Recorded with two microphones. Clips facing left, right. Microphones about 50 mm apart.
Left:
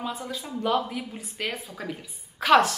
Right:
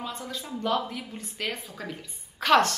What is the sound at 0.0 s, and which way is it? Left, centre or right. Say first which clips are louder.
Speech: left 3 dB; centre.